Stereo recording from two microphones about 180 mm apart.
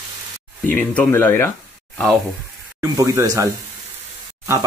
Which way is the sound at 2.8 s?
15° right (ahead or behind).